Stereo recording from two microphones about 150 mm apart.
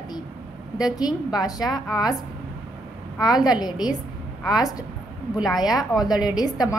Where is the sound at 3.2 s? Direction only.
25° left (ahead or behind).